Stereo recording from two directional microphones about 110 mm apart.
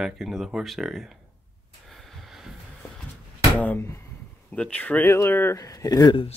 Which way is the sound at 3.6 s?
20° left (ahead or behind).